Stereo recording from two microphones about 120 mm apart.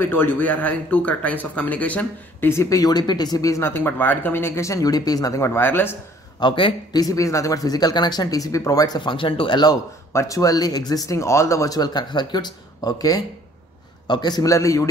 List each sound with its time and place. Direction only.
0.0 s speech: 15° left (ahead or behind)
6.4 s a man's voice: 40° left (ahead or behind)
10.1 s a man's voice: 25° left (ahead or behind)